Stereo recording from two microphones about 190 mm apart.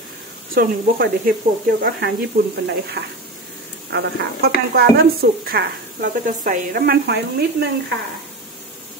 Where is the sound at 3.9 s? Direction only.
65° right (ahead or behind).